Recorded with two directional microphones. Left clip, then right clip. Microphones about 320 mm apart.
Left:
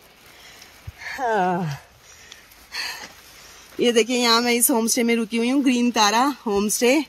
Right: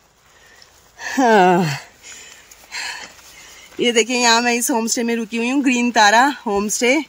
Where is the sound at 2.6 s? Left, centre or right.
Centre.